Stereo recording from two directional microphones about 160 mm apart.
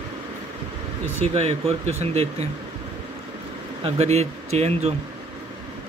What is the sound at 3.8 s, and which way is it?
Speech, 40° right (ahead or behind).